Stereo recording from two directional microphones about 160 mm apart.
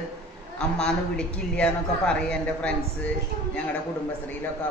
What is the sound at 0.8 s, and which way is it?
A man's voice, 5° left (ahead or behind).